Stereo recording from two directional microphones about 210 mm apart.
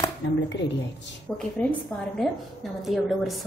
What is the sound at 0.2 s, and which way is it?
Speech, 55° left (ahead or behind).